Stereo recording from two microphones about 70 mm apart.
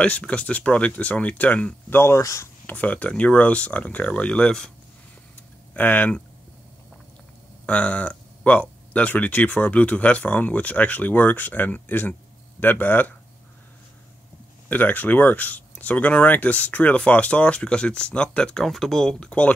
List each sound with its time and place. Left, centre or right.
0.0 s speech: centre
1.9 s speech: left
2.6 s speech: left
5.8 s speech: left
7.6 s speech: centre
14.7 s speech: left